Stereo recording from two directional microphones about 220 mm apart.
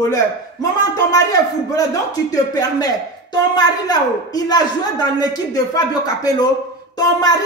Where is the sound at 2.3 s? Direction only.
15° left (ahead or behind).